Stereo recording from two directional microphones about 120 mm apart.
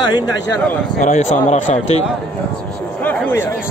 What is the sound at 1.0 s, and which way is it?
A man's voice, 75° left (ahead or behind).